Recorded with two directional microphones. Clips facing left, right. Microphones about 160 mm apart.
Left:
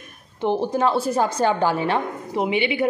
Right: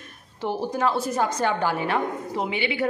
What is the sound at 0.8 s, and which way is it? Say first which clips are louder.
A woman's voice: left 1 dB; 30° left (ahead or behind).